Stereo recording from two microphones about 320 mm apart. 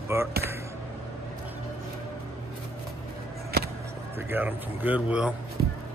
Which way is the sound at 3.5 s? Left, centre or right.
Right.